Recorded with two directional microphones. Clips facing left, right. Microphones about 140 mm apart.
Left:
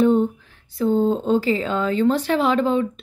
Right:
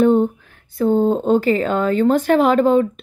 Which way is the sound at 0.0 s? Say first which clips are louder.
Right 3 dB; 55° right (ahead or behind).